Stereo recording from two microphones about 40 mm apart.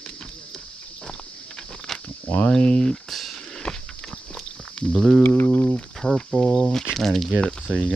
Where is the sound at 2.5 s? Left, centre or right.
Left.